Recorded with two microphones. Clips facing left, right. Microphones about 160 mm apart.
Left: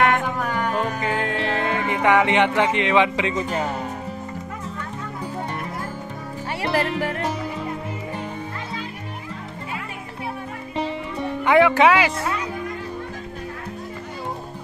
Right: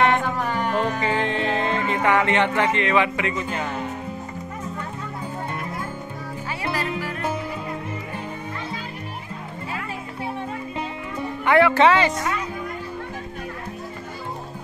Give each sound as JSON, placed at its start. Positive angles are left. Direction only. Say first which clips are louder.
{"t": 0.0, "sound": "music", "louder": "even", "side_deg": 0}
{"t": 7.0, "sound": "music", "louder": "left 5 dB", "side_deg": 70}
{"t": 11.4, "sound": "speech", "louder": "left 1 dB", "side_deg": 15}